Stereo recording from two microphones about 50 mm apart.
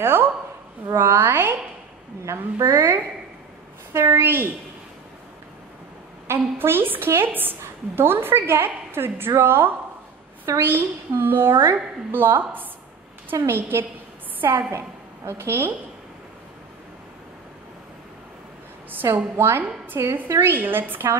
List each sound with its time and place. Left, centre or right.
0.0 s a woman's voice: right
0.8 s a woman's voice: right
6.2 s a woman's voice: right
14.7 s a woman's voice: right
19.1 s a woman's voice: right